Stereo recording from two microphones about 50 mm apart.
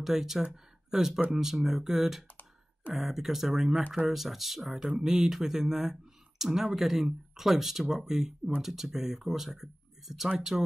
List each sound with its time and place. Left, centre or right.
0.0 s speech: centre